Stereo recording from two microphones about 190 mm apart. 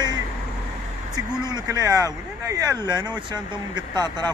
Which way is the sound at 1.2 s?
20° right (ahead or behind).